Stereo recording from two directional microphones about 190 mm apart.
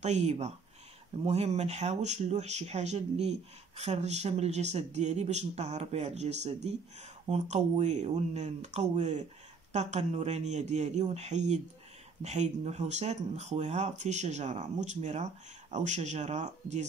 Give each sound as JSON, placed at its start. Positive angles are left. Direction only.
{"t": 0.0, "sound": "speech", "side_deg": -35}